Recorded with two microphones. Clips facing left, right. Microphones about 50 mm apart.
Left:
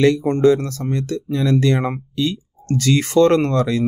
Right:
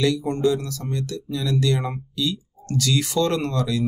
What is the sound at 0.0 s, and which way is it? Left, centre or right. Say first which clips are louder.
Speech: left 7 dB; left.